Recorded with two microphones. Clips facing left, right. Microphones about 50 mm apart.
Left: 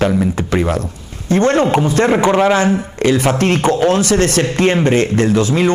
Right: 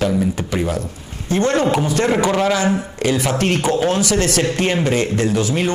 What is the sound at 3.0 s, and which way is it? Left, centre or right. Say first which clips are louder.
Speech: left 5 dB; left.